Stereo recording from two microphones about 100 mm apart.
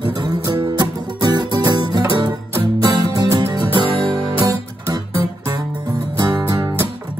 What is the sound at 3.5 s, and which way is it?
Music, 50° right (ahead or behind).